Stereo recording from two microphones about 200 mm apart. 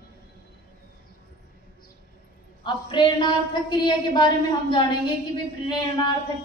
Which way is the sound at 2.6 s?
25° left (ahead or behind).